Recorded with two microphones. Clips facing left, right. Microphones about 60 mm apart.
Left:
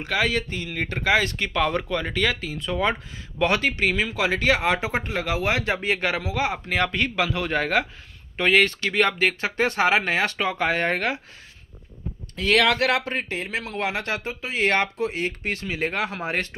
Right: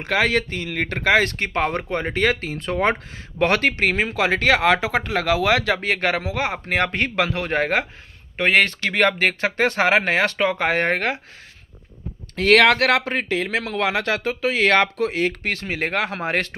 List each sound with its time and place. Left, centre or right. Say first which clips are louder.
0.0 s speech: right 4 dB; right
5.9 s speech: right 3 dB; right
12.4 s speech: right 5 dB; right
15.6 s speech: right 2 dB; right